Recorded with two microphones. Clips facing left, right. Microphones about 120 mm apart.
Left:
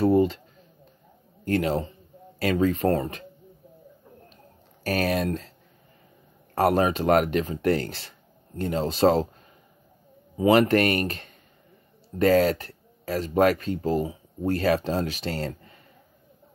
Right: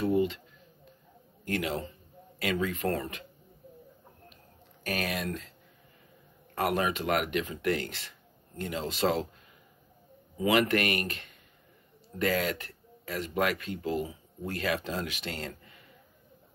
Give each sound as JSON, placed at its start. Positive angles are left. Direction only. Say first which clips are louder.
{"t": 0.0, "sound": "a sound", "louder": "left 7 dB", "side_deg": 40}
{"t": 1.4, "sound": "speech", "louder": "left 8 dB", "side_deg": 35}
{"t": 4.8, "sound": "speech", "louder": "left 8 dB", "side_deg": 35}
{"t": 6.5, "sound": "speech", "louder": "left 7 dB", "side_deg": 35}
{"t": 10.3, "sound": "speech", "louder": "left 7 dB", "side_deg": 30}